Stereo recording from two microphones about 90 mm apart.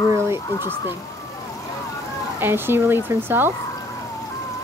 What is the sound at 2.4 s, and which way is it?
Speech, 25° right (ahead or behind).